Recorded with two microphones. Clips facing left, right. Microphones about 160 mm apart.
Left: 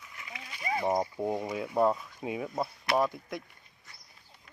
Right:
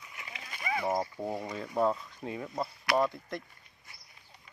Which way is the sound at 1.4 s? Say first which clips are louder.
Left 2 dB; 10° left (ahead or behind).